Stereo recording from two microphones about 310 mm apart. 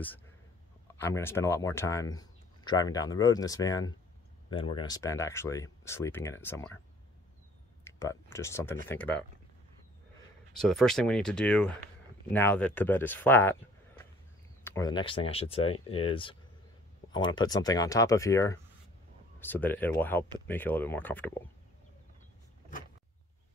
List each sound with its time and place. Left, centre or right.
0.9 s speech: centre
7.8 s speech: centre
10.5 s speech: centre
14.6 s speech: centre